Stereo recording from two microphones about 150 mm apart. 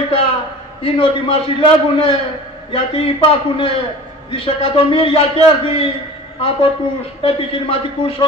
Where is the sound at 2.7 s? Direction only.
40° left (ahead or behind).